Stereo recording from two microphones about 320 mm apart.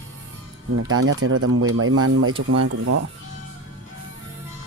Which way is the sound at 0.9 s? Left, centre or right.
Right.